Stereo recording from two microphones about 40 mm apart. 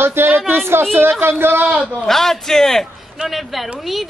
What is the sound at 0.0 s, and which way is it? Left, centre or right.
Speech, right.